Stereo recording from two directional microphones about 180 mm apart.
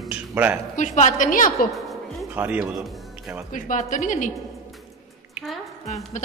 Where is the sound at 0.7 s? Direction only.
40° left (ahead or behind).